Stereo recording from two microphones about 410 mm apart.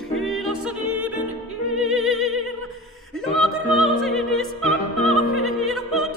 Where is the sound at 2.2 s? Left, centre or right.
Right.